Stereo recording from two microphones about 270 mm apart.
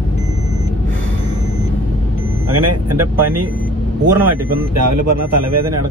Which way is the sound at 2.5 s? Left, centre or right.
Right.